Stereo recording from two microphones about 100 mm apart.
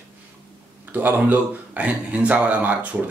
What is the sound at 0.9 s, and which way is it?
A man's voice, 20° right (ahead or behind).